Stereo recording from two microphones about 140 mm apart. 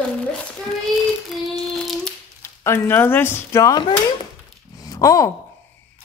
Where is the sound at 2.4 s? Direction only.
20° left (ahead or behind).